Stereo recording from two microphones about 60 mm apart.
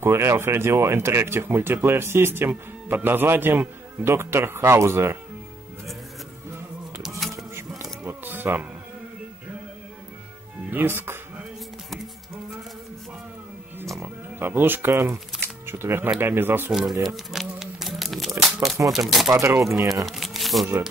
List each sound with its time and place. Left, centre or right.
0.0 s speech: right
7.0 s a sound: centre
7.3 s a sound: right
8.0 s music: right
10.7 s speech: right
14.0 s speech: right
17.0 s a sound: centre
18.9 s speech: centre
19.2 s speech: right
20.1 s crumpling: centre